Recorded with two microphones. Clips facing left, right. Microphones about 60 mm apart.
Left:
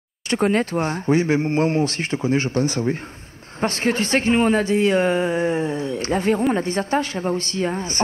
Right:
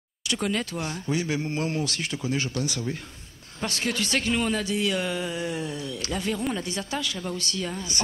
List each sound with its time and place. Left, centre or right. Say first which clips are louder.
0.3 s speech: left 9 dB; left